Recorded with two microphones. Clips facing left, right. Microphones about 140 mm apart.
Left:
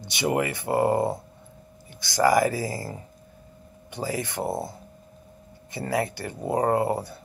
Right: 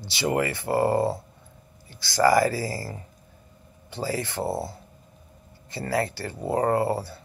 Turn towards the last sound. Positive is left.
turn(degrees=20)  # may be behind; listen again after turning